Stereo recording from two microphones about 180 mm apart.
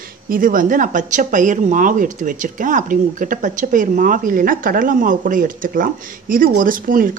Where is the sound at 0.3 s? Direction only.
50° right (ahead or behind).